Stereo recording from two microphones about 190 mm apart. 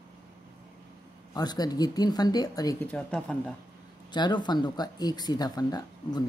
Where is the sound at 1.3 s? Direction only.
20° left (ahead or behind).